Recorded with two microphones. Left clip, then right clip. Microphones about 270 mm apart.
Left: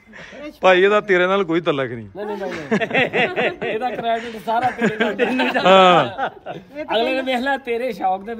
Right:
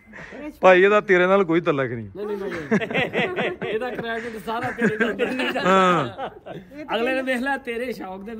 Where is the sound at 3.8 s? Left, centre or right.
Centre.